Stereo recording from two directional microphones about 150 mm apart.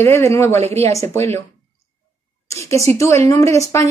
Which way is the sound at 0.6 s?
45° right (ahead or behind).